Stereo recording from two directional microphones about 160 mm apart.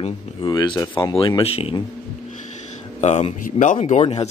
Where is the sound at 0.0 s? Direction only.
30° left (ahead or behind).